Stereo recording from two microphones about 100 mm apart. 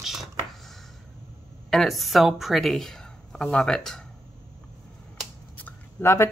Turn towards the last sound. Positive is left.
turn(degrees=25)  # may be behind; listen again after turning